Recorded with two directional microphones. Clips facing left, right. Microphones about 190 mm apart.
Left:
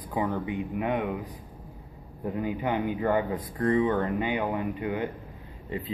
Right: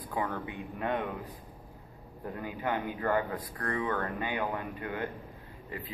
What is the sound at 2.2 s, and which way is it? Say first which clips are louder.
Speech: left 6 dB; 20° left (ahead or behind).